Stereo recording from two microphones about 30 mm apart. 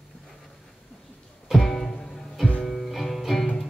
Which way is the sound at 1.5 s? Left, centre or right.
Centre.